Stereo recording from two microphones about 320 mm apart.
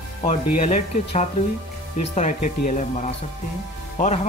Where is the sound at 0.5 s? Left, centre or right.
Centre.